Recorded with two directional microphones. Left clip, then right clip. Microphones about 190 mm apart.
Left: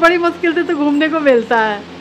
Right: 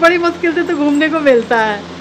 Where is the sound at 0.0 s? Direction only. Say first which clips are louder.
Right 1 dB; 10° left (ahead or behind).